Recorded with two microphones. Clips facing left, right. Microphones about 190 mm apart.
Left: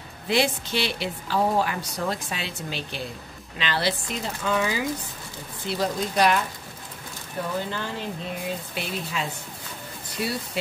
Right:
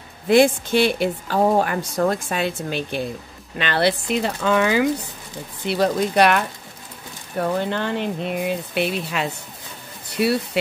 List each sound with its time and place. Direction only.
0.3 s a woman's voice: 50° right (ahead or behind); by 10.3 s 70° right (ahead or behind)